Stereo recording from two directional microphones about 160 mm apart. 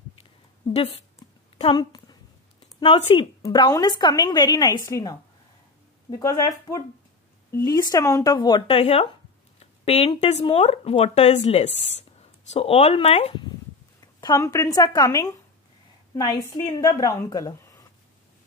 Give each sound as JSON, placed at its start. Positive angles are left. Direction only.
{"t": 1.2, "sound": "a sound", "side_deg": 25}
{"t": 1.6, "sound": "a woman's voice", "side_deg": 30}
{"t": 14.2, "sound": "a woman's voice", "side_deg": 25}